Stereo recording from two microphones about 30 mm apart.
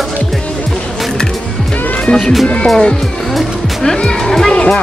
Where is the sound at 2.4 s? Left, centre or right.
Left.